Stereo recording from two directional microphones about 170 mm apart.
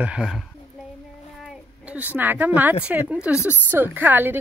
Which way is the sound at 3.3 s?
15° left (ahead or behind).